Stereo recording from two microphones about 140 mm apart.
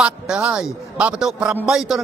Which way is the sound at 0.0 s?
5° right (ahead or behind).